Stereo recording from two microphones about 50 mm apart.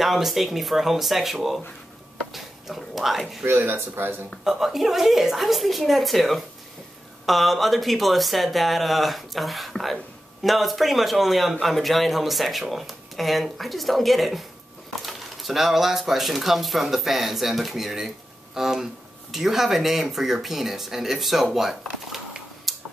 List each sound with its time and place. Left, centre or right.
0.0 s speech: centre
3.4 s speech: right
4.5 s speech: centre
22.7 s tick-tock: centre